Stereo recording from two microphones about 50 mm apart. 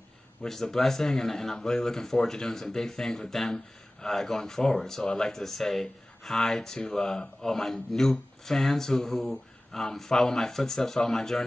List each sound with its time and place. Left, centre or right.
0.4 s speech: centre